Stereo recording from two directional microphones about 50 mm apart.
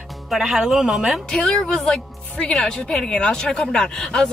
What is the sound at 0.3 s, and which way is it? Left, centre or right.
Speech, centre.